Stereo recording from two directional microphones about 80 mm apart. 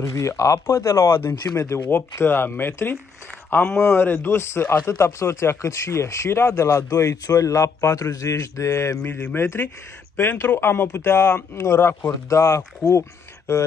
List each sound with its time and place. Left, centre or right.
0.0 s speech: left
1.9 s speech: left
9.0 s speech: left